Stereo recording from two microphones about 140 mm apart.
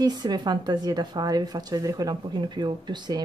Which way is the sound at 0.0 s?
30° right (ahead or behind).